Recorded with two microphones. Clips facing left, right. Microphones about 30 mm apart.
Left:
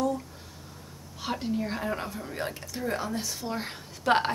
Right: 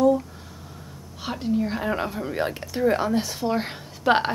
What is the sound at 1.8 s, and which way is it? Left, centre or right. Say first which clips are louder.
A woman's voice: right 6 dB; right.